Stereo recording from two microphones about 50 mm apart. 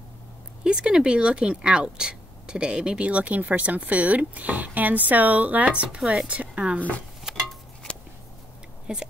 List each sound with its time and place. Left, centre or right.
0.7 s speech: centre
3.1 s speech: right
5.9 s a woman's voice: centre
6.2 s speech: right
7.3 s a sound: centre
8.9 s speech: centre